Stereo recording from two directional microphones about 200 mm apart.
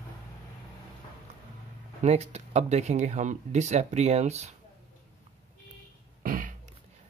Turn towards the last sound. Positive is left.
turn(degrees=-40)  # may be behind; listen again after turning